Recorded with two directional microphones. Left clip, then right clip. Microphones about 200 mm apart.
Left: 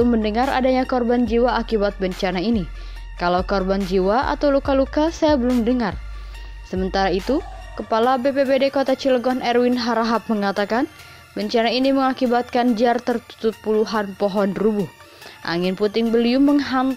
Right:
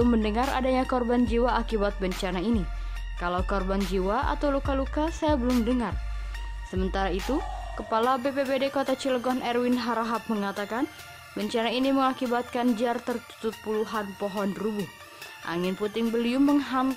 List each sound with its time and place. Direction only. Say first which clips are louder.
0.0 s speech: left 6 dB; 10° left (ahead or behind)